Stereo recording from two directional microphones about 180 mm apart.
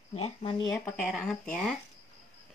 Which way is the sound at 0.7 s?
Centre (ahead or behind).